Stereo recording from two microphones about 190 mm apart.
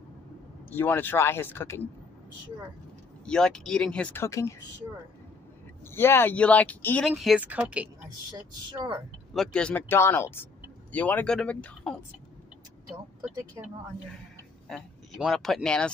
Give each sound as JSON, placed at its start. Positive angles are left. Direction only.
{"t": 0.7, "sound": "speech", "side_deg": 10}
{"t": 3.3, "sound": "speech", "side_deg": 5}
{"t": 5.9, "sound": "speech", "side_deg": 10}
{"t": 8.3, "sound": "a woman's voice", "side_deg": -25}
{"t": 9.3, "sound": "speech", "side_deg": 5}
{"t": 14.7, "sound": "speech", "side_deg": 0}